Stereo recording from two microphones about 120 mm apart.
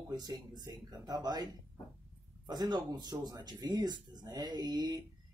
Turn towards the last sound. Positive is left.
turn(degrees=-35)  # may be behind; listen again after turning